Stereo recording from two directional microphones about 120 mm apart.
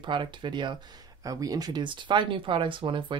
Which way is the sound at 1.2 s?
30° right (ahead or behind).